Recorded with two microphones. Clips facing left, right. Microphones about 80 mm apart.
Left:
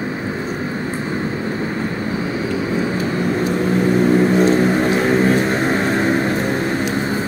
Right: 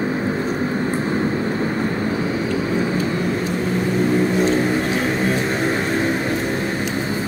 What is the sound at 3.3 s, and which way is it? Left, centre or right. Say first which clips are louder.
Vehicle: left 4 dB; left.